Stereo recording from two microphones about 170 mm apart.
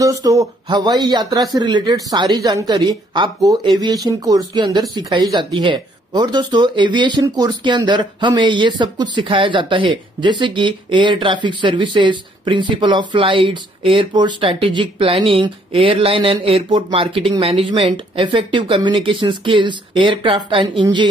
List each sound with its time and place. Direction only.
0.0 s speech: 20° right (ahead or behind)